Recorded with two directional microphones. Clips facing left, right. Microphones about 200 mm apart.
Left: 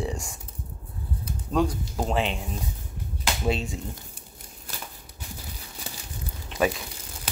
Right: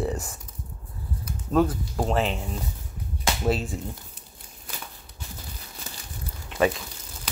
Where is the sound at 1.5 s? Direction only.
5° right (ahead or behind).